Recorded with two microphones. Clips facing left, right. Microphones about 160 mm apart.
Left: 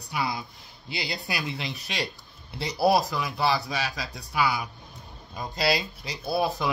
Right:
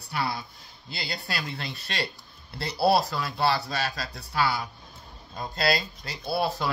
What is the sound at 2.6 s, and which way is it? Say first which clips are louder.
Speech: even; 15° left (ahead or behind).